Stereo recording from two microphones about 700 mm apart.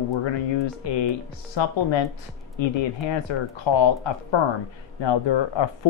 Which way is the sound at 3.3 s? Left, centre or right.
Left.